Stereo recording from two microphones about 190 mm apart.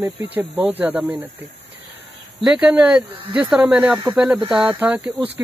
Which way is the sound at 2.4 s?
5° right (ahead or behind).